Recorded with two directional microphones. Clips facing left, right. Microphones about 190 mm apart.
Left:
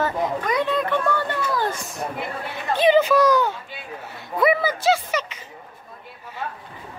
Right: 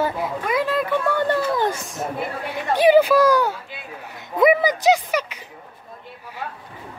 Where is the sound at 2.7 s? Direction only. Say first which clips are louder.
Right 3 dB; 15° right (ahead or behind).